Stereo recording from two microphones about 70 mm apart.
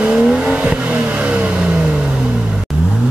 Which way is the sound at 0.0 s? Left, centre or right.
Centre.